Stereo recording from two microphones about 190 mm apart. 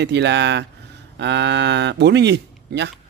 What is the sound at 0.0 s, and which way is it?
Speech, 65° right (ahead or behind).